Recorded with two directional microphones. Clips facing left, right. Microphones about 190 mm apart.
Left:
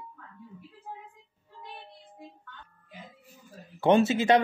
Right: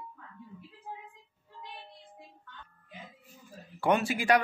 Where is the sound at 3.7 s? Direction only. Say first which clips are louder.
Left 6 dB; 25° left (ahead or behind).